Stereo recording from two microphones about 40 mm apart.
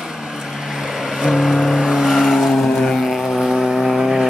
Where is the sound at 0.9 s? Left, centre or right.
Centre.